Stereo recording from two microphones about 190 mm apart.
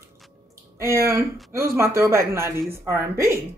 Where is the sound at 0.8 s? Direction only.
15° right (ahead or behind).